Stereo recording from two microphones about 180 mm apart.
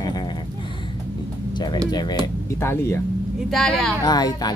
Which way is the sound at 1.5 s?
25° left (ahead or behind).